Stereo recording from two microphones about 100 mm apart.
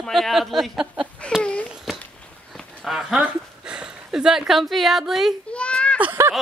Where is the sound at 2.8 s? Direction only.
Centre (ahead or behind).